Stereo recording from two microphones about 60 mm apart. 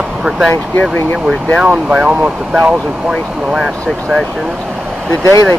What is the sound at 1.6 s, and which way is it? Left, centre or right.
Speech, centre.